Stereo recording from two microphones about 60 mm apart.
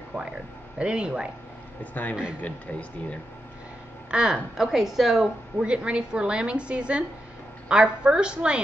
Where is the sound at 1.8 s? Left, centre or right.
Left.